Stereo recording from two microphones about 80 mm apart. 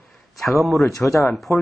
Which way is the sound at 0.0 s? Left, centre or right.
Centre.